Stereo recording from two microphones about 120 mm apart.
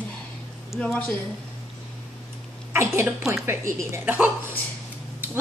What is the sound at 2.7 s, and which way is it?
A woman's voice, 20° right (ahead or behind).